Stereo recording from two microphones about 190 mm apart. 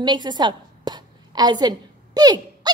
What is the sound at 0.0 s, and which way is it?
A woman's voice, 25° right (ahead or behind).